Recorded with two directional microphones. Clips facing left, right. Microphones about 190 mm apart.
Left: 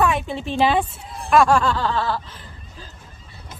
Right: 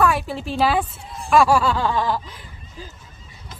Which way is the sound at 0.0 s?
5° right (ahead or behind).